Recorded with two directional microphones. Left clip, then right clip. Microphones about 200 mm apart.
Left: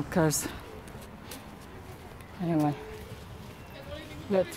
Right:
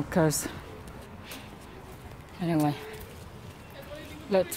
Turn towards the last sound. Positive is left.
turn(degrees=-15)  # may be behind; listen again after turning